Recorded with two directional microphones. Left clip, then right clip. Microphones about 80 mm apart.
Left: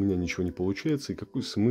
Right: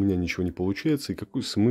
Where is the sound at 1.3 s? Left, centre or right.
Right.